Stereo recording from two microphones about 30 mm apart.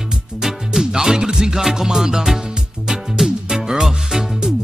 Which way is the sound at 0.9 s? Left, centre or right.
Right.